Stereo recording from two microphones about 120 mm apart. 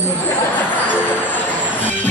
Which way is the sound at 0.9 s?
15° left (ahead or behind).